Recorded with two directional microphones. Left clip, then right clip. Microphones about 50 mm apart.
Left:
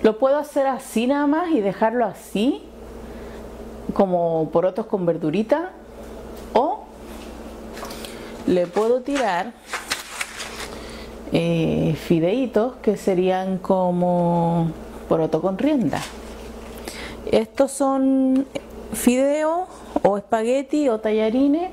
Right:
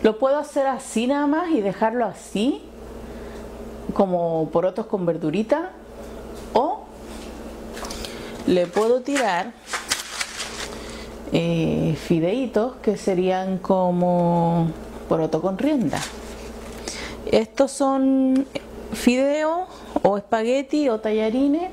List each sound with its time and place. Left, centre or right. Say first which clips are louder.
0.0 s speech: left 1 dB; left
3.9 s speech: left 2 dB; left
8.5 s speech: even; centre
9.7 s a sound: right 1 dB; centre
11.4 s speech: left 1 dB; left
13.7 s speech: even; centre
15.0 s speech: left 1 dB; left
16.8 s a sound: right 1 dB; centre
17.6 s speech: even; left
18.5 s speech: even; left